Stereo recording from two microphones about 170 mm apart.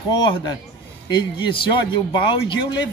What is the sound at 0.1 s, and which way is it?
Speech, 25° left (ahead or behind).